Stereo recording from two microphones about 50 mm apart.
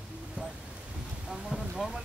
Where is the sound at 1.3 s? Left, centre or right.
Centre.